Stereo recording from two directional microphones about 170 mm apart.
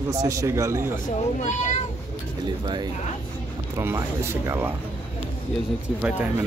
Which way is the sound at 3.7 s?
15° right (ahead or behind).